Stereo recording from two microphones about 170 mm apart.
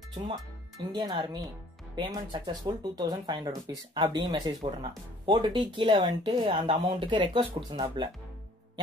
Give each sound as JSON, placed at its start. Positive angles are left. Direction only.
{"t": 0.1, "sound": "speech", "side_deg": -25}